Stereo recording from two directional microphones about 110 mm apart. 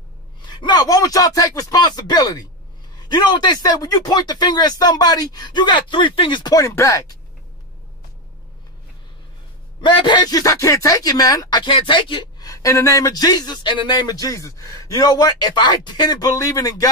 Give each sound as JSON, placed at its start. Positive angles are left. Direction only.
{"t": 0.5, "sound": "speech", "side_deg": 40}
{"t": 6.5, "sound": "speech", "side_deg": 30}
{"t": 9.8, "sound": "speech", "side_deg": 45}
{"t": 11.6, "sound": "speech", "side_deg": 50}
{"t": 12.4, "sound": "speech", "side_deg": 30}